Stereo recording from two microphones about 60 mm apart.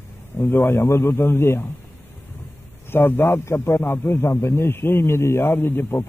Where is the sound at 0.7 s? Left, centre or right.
Left.